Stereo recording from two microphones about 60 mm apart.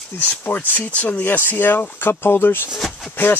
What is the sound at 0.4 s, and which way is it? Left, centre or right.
Speech, left.